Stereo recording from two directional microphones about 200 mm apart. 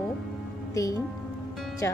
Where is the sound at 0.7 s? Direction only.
15° left (ahead or behind).